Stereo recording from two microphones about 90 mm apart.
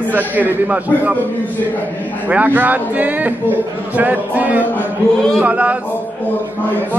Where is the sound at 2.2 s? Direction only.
20° right (ahead or behind).